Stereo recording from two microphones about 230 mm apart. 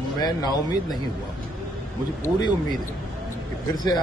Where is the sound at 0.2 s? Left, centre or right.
Centre.